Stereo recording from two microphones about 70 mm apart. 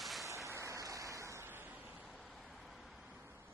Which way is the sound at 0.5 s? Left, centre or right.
Right.